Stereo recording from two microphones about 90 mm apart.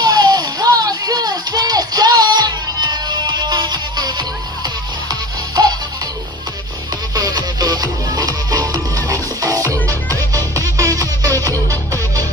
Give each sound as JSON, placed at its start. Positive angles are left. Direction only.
{"t": 0.0, "sound": "music", "side_deg": -45}
{"t": 5.6, "sound": "music", "side_deg": -45}
{"t": 7.2, "sound": "music", "side_deg": -45}